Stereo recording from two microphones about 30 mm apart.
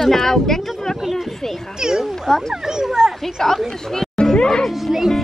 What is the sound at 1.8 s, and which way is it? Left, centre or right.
Speech, right.